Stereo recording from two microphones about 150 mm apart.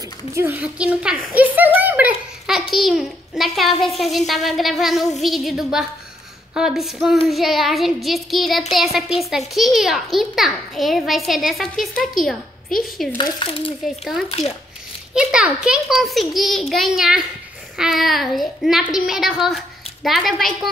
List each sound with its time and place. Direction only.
0.3 s a woman's voice: 15° right (ahead or behind); by 4.2 s centre (ahead or behind)
4.3 s child singing: centre (ahead or behind)
12.2 s a woman's voice: centre (ahead or behind)
13.2 s speech: 35° left (ahead or behind)
15.1 s child singing: 5° right (ahead or behind)
18.9 s a woman's voice: centre (ahead or behind)